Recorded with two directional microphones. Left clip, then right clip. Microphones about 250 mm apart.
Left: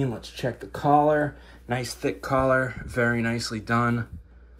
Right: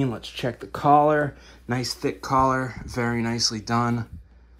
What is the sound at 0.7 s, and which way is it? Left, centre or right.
Speech, right.